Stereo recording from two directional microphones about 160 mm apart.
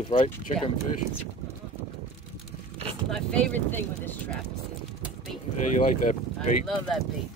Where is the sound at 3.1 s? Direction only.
5° left (ahead or behind).